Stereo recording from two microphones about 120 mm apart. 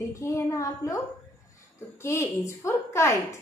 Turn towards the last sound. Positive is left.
turn(degrees=20)  # may be behind; listen again after turning